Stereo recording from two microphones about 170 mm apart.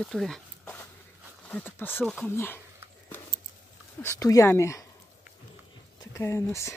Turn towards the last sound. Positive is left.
turn(degrees=15)  # may be behind; listen again after turning